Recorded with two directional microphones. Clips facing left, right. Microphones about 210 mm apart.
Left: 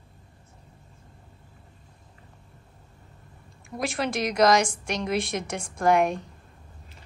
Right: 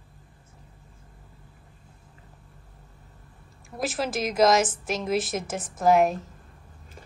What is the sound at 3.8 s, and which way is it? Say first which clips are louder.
A woman's voice: even; centre (ahead or behind).